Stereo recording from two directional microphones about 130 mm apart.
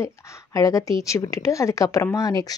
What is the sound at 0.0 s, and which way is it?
Speech, 25° left (ahead or behind).